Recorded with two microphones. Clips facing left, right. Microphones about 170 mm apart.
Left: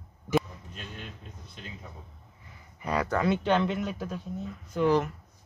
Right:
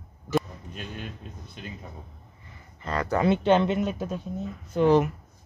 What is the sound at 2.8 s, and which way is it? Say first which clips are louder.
Speech: left 1 dB; 10° left (ahead or behind).